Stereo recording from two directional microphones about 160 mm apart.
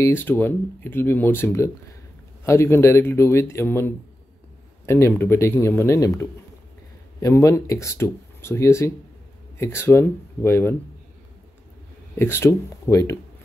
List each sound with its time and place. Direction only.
0.0 s speech: 15° left (ahead or behind)
12.2 s speech: 15° left (ahead or behind)